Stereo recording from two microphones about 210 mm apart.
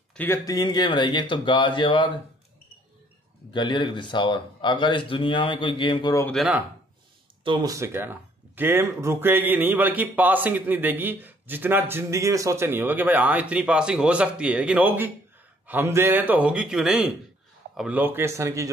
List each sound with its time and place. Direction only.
0.1 s speech: 10° left (ahead or behind)
3.5 s speech: 20° left (ahead or behind)
6.2 s speech: centre (ahead or behind)
7.4 s speech: 20° right (ahead or behind)